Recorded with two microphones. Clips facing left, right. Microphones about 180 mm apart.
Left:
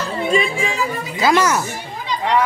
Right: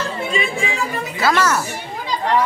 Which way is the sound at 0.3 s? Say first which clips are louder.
Left 6 dB; 45° left (ahead or behind).